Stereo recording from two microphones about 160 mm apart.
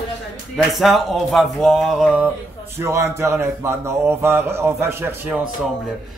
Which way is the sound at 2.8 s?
15° right (ahead or behind).